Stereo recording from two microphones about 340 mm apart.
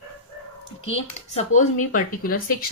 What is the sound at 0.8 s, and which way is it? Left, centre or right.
Speech, centre.